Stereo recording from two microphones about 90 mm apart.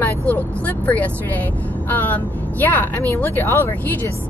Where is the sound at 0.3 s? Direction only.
15° left (ahead or behind).